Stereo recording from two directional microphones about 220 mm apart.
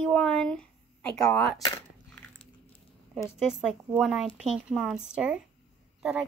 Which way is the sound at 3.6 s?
Centre (ahead or behind).